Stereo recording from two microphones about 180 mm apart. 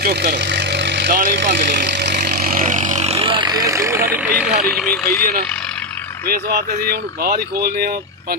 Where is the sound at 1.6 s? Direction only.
70° right (ahead or behind).